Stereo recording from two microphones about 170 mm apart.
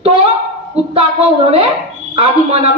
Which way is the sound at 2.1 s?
35° right (ahead or behind).